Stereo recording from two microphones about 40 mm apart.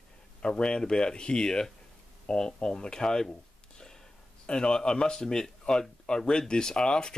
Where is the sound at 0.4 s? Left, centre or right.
Left.